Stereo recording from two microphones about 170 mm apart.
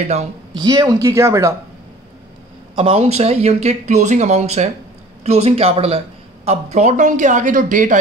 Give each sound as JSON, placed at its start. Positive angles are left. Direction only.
{"t": 0.6, "sound": "speech", "side_deg": -20}
{"t": 2.7, "sound": "speech", "side_deg": -35}